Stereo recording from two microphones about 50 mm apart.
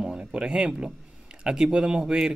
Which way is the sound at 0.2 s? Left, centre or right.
Centre.